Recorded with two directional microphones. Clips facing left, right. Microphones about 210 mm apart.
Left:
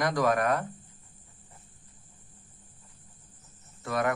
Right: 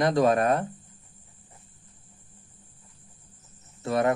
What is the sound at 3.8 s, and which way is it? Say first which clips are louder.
Speech: right 5 dB; 25° right (ahead or behind).